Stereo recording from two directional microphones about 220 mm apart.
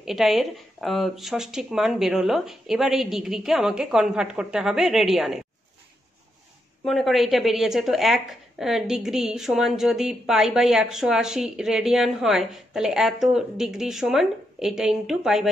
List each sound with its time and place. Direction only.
0.0 s a woman's voice: centre (ahead or behind)
6.8 s a woman's voice: centre (ahead or behind)